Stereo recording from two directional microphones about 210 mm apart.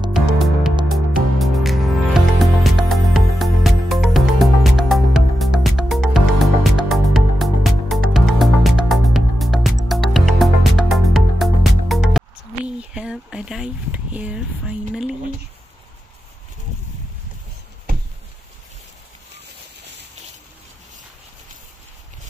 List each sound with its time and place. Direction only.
0.1 s music: centre (ahead or behind)